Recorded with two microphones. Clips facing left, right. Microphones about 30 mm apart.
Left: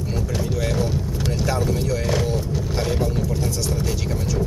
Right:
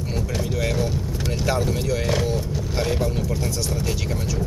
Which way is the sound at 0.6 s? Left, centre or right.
Centre.